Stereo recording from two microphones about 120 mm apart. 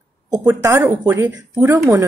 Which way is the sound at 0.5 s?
20° right (ahead or behind).